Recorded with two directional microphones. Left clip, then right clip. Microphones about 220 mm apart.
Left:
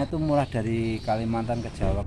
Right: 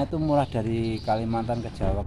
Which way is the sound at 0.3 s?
Centre (ahead or behind).